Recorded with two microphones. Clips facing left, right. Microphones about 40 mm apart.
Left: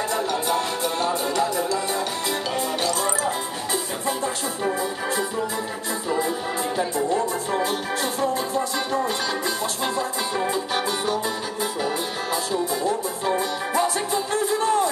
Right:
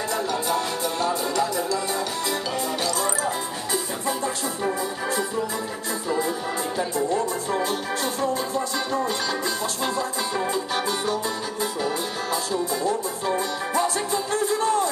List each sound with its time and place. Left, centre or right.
0.1 s music: left
2.8 s music: left
6.0 s music: left
7.1 s music: centre
10.5 s music: left
13.3 s music: left